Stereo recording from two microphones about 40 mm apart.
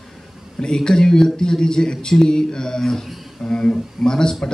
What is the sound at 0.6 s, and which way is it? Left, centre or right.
Speech, centre.